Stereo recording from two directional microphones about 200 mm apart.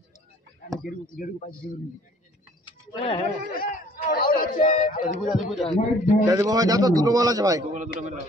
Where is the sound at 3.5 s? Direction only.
45° left (ahead or behind).